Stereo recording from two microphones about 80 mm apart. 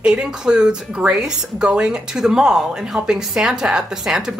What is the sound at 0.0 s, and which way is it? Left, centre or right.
Speech, centre.